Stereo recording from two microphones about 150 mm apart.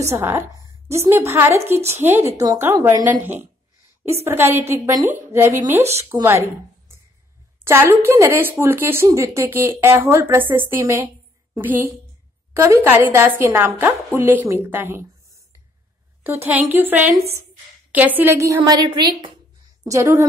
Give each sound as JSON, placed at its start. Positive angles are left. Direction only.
{"t": 0.0, "sound": "speech", "side_deg": -20}
{"t": 16.3, "sound": "a woman's voice", "side_deg": -15}